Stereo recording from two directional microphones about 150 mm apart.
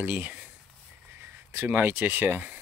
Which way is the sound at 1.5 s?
15° right (ahead or behind).